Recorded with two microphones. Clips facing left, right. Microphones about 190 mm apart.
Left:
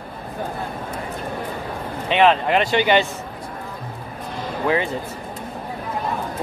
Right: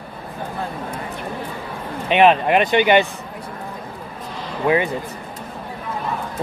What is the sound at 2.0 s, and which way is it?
Speech, 15° right (ahead or behind).